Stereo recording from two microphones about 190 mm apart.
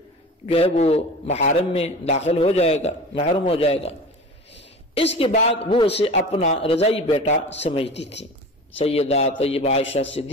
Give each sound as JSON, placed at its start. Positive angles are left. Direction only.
{"t": 0.5, "sound": "a man's voice", "side_deg": 30}
{"t": 4.9, "sound": "a man's voice", "side_deg": 30}
{"t": 8.7, "sound": "a man's voice", "side_deg": 30}